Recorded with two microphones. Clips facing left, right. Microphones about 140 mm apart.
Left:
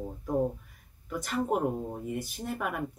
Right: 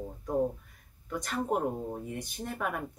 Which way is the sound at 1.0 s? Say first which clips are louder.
Left 2 dB; 5° left (ahead or behind).